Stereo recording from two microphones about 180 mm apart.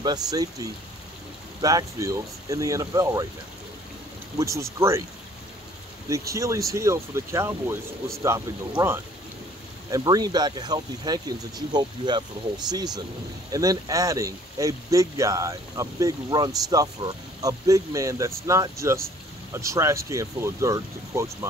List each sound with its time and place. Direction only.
0.0 s speech: 20° right (ahead or behind)
4.4 s speech: 15° right (ahead or behind)
6.0 s speech: 15° right (ahead or behind)